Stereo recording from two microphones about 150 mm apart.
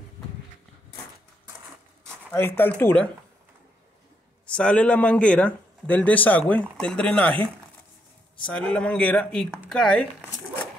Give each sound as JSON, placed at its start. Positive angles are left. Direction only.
{"t": 2.3, "sound": "a man's voice", "side_deg": 15}
{"t": 4.6, "sound": "a man's voice", "side_deg": 5}
{"t": 8.5, "sound": "a man's voice", "side_deg": 5}